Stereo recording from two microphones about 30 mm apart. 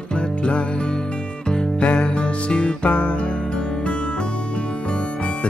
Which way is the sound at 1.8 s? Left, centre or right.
Left.